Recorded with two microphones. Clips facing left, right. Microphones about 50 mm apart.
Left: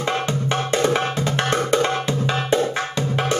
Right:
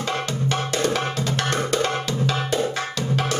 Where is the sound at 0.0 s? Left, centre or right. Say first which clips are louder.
Left 3 dB; left.